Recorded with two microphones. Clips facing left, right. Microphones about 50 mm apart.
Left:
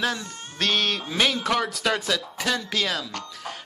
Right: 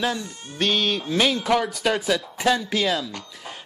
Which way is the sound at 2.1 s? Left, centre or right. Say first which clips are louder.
Right 4 dB; centre.